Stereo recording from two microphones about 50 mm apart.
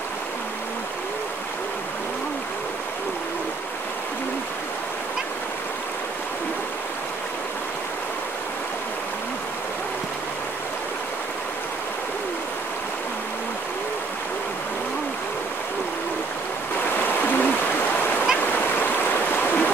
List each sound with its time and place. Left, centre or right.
17.0 s stream: left